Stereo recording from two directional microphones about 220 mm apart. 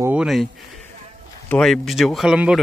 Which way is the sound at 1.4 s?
5° left (ahead or behind).